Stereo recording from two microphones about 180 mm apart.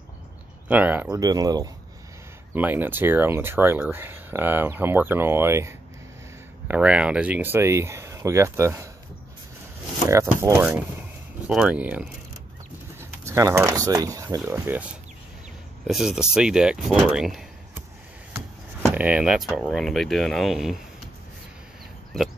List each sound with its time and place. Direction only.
0.7 s speech: 10° right (ahead or behind)
1.2 s speech: 20° right (ahead or behind)
2.5 s speech: 10° right (ahead or behind)
10.0 s speech: 15° right (ahead or behind)
13.2 s speech: 15° right (ahead or behind)
18.9 s speech: 5° right (ahead or behind)